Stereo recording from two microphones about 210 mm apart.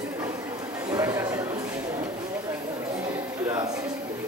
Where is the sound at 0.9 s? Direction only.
15° right (ahead or behind).